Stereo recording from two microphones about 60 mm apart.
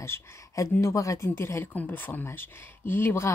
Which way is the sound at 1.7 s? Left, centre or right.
Left.